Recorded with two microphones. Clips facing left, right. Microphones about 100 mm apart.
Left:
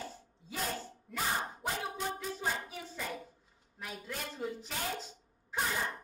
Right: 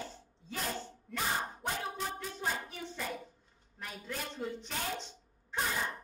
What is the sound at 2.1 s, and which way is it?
Hands, centre (ahead or behind).